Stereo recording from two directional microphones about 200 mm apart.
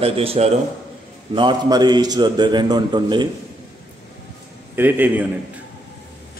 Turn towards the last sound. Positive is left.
turn(degrees=-10)  # may be behind; listen again after turning